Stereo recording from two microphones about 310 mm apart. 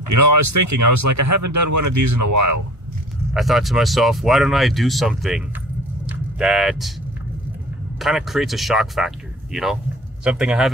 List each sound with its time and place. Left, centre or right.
0.1 s speech: right
3.3 s speech: centre
8.0 s speech: centre